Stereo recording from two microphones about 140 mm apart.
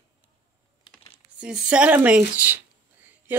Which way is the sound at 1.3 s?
5° right (ahead or behind).